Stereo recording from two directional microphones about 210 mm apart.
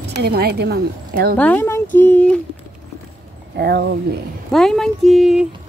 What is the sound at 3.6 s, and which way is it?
Speech, 55° right (ahead or behind).